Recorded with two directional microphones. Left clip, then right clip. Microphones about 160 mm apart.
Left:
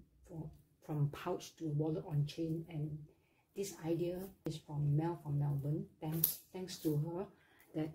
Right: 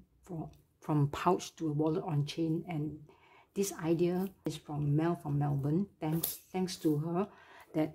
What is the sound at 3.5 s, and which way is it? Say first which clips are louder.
Speech: right 7 dB; 40° right (ahead or behind).